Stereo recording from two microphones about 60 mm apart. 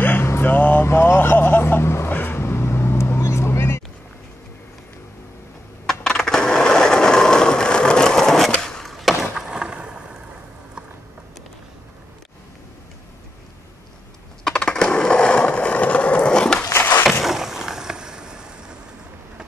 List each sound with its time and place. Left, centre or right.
0.0 s vehicle: left
0.8 s speech: left
2.1 s vehicle: left
5.9 s skateboard: centre
9.2 s vehicle: centre
14.4 s a sound: centre
17.2 s skateboard: centre